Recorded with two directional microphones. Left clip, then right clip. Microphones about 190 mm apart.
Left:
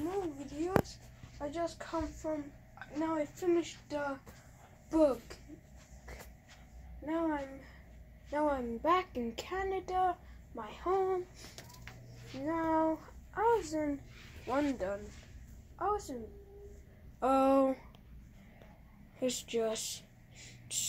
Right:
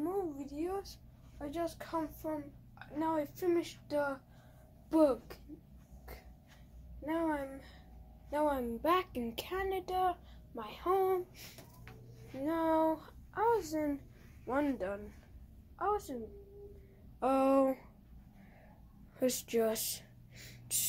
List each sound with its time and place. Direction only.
1.4 s a woman's voice: 10° left (ahead or behind); by 5.4 s 5° right (ahead or behind)
7.1 s a child's voice: centre (ahead or behind)
17.2 s speech: centre (ahead or behind)
19.1 s a sound: 20° right (ahead or behind)